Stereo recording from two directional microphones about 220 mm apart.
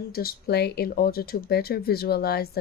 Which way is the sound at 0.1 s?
45° left (ahead or behind).